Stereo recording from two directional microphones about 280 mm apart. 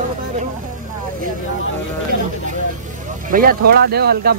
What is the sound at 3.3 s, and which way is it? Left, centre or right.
Speech, right.